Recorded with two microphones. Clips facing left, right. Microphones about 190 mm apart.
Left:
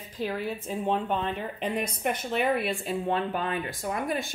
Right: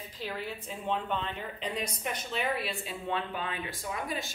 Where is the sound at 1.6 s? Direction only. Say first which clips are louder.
Left 6 dB; 55° left (ahead or behind).